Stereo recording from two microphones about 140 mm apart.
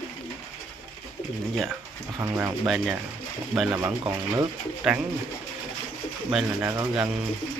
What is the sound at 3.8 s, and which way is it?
Speech, 20° right (ahead or behind).